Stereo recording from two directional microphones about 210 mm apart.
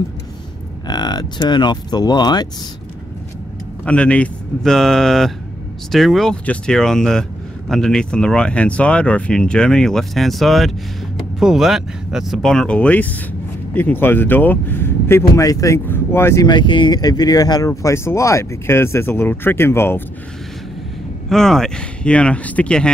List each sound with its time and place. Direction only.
0.8 s speech: 20° left (ahead or behind)
3.8 s speech: 5° left (ahead or behind)
21.3 s speech: centre (ahead or behind)